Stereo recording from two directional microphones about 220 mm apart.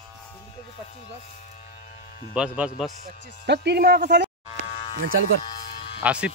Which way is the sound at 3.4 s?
50° right (ahead or behind).